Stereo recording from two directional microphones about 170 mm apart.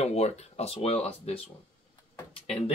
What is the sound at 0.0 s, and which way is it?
Speech, 40° left (ahead or behind).